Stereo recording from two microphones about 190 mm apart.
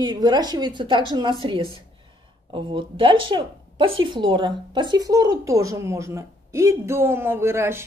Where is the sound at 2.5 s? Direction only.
25° right (ahead or behind).